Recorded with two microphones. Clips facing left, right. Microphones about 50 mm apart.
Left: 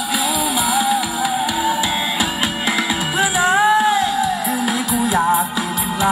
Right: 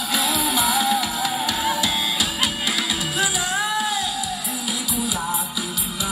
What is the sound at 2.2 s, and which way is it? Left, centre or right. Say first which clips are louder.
Music: left 4 dB; left.